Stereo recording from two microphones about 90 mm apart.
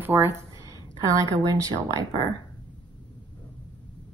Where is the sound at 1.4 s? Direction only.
40° right (ahead or behind).